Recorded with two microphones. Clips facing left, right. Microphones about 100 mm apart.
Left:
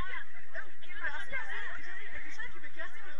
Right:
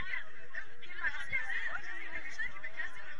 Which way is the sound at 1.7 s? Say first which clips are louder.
Right 3 dB; 75° right (ahead or behind).